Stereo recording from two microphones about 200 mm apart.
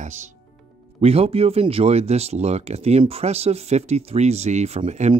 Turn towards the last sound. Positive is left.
turn(degrees=-35)  # may be behind; listen again after turning